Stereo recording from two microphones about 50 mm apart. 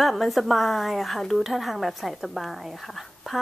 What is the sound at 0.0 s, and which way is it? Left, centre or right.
Speech, centre.